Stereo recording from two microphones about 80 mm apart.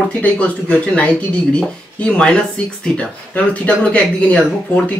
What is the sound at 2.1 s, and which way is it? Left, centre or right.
Speech, centre.